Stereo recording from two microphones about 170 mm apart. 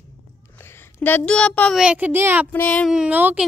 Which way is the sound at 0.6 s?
15° left (ahead or behind).